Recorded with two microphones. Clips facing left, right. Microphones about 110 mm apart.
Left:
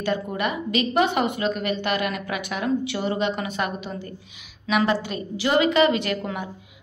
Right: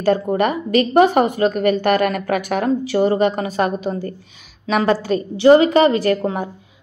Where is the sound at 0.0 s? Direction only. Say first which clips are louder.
Right 8 dB; 45° right (ahead or behind).